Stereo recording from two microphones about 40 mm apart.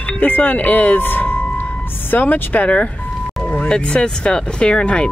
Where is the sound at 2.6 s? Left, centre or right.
Left.